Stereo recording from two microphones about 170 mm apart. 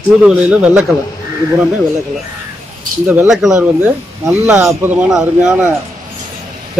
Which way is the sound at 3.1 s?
5° right (ahead or behind).